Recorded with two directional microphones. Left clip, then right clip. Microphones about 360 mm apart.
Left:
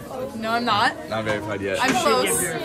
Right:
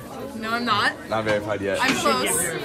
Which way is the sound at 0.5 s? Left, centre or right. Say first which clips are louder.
Left 1 dB; centre.